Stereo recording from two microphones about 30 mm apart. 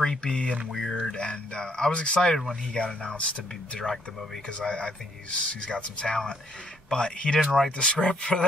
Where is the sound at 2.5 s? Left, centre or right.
Left.